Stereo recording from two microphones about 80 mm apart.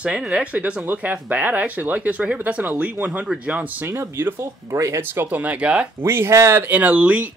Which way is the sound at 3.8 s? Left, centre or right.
Right.